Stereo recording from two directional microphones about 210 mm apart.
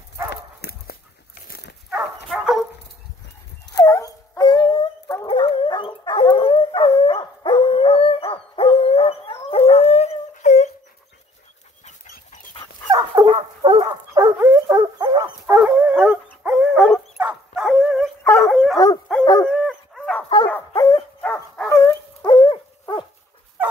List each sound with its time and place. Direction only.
0.3 s dog: 50° left (ahead or behind)
2.2 s dog: centre (ahead or behind)
3.7 s dog: 15° left (ahead or behind); by 10.7 s 35° left (ahead or behind)
11.8 s dog: 35° left (ahead or behind)
12.9 s dog: 20° right (ahead or behind)
15.2 s dog: 5° right (ahead or behind); by 23.0 s 20° left (ahead or behind)
23.6 s dog: 10° right (ahead or behind)